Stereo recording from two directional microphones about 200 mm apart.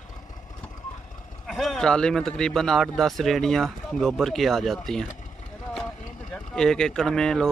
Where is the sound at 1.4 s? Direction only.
Centre (ahead or behind).